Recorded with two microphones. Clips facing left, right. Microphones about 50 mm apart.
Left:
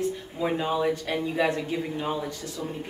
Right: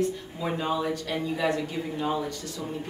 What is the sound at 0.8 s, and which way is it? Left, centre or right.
Speech, left.